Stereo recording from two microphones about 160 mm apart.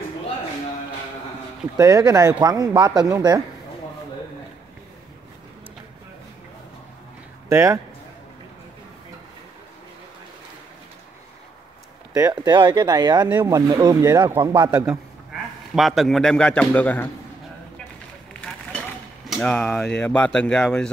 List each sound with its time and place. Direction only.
1.8 s speech: 20° right (ahead or behind)
7.4 s speech: 15° right (ahead or behind)
12.1 s speech: 20° right (ahead or behind)
15.7 s a man's voice: centre (ahead or behind)
19.2 s a man's voice: 5° left (ahead or behind)